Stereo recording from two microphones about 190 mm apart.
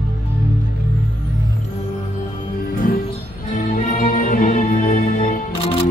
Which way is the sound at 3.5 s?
45° left (ahead or behind).